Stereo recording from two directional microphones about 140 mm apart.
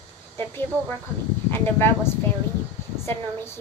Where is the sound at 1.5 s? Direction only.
15° left (ahead or behind).